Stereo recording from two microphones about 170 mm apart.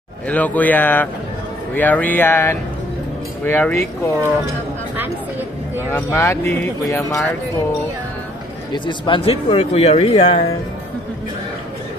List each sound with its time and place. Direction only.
0.3 s speech: 10° left (ahead or behind)
5.9 s speech: 15° left (ahead or behind)
8.7 s speech: 30° left (ahead or behind)